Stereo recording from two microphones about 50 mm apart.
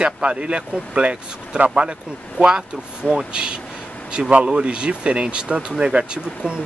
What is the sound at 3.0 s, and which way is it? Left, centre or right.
A man's voice, centre.